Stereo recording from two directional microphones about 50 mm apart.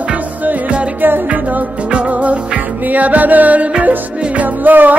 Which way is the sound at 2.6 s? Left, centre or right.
Right.